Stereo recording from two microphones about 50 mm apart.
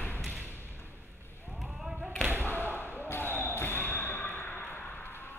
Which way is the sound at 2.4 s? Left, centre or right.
Left.